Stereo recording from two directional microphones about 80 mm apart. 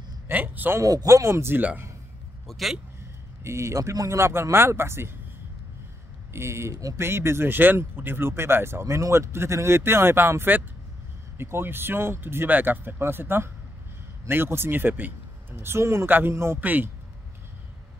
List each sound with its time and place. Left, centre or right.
0.3 s speech: right
0.7 s speech: right
2.4 s a man's voice: centre
3.4 s speech: right
6.3 s speech: right